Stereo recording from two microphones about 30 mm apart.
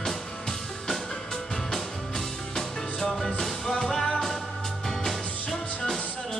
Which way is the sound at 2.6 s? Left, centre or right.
Centre.